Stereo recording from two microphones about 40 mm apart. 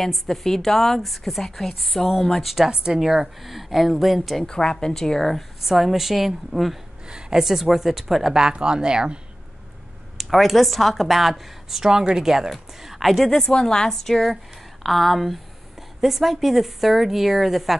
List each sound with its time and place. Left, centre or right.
0.0 s a woman's voice: centre
2.4 s speech: centre
2.7 s speech: centre
3.0 s a woman's voice: centre
4.5 s a woman's voice: centre
5.6 s a woman's voice: centre
7.1 s speech: centre
8.4 s speech: centre
10.1 s a woman's voice: centre
13.3 s a woman's voice: centre